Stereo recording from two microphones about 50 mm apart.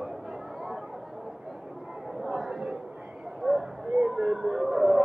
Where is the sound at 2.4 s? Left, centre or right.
Centre.